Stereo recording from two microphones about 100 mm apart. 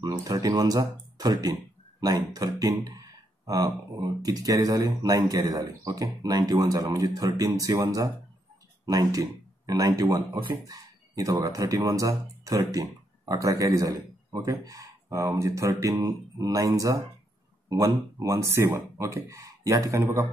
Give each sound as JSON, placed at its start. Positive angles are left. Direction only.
{"t": 0.0, "sound": "speech", "side_deg": -40}